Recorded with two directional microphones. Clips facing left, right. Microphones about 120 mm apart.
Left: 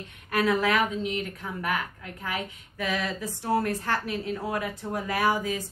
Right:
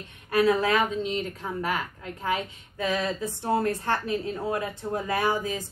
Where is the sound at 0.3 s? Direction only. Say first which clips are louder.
Right 2 dB; 30° right (ahead or behind).